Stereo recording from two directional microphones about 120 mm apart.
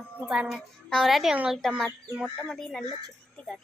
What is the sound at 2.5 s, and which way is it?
Speech, 5° left (ahead or behind).